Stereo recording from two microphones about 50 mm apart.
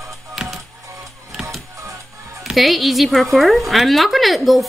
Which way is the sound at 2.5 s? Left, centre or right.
Centre.